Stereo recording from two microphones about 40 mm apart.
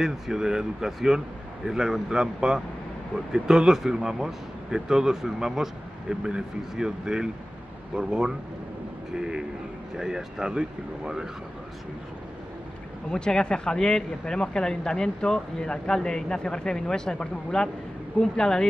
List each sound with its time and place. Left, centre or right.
0.0 s speech: centre
13.1 s speech: centre